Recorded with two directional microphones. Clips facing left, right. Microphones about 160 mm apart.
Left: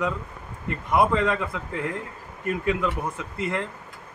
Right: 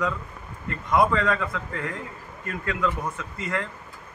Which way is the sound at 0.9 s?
25° left (ahead or behind).